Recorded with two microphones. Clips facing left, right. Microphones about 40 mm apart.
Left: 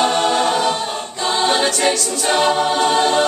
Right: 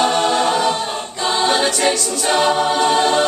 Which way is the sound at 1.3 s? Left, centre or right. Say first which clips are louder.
Even; centre.